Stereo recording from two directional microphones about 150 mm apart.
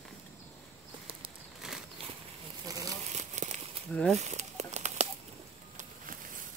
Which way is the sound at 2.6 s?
25° right (ahead or behind).